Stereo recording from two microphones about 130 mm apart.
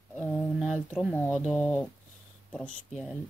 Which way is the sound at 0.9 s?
10° left (ahead or behind).